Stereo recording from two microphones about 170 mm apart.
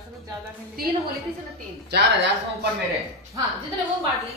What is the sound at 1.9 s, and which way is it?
Speech, 80° right.